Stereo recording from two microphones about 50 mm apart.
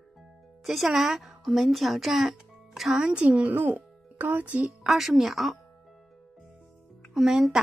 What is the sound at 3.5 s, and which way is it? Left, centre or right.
A child's voice, right.